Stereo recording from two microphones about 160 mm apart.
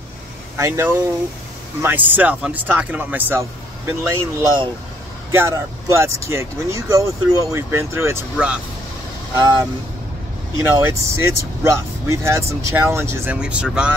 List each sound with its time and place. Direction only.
0.6 s speech: 15° right (ahead or behind)
9.3 s speech: 25° right (ahead or behind)
10.8 s speech: 15° right (ahead or behind)